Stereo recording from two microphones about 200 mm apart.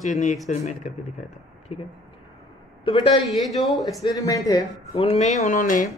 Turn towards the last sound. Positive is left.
turn(degrees=40)  # may be behind; listen again after turning